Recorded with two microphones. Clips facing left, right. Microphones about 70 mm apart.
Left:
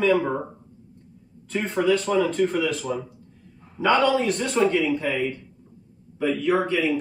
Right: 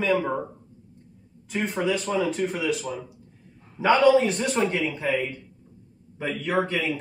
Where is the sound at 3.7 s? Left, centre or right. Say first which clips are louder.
Right 2 dB; centre.